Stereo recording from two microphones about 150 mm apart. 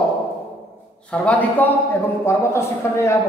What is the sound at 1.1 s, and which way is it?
A man's voice, 10° left (ahead or behind).